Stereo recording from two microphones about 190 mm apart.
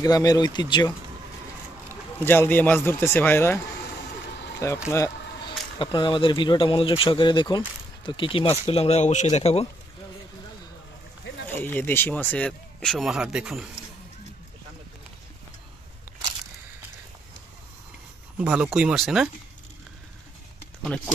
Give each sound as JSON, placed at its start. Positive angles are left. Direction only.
{"t": 0.0, "sound": "speech", "side_deg": 20}
{"t": 2.2, "sound": "speech", "side_deg": 10}
{"t": 4.6, "sound": "speech", "side_deg": 15}
{"t": 11.4, "sound": "speech", "side_deg": 10}
{"t": 18.4, "sound": "speech", "side_deg": -5}